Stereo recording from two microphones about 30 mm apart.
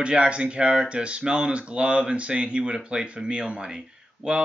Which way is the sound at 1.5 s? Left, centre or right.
Right.